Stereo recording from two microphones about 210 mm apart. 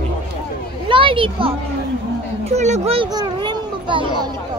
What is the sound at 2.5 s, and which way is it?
Speech, 35° right (ahead or behind).